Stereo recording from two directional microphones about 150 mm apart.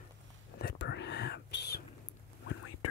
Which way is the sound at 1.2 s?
90° left.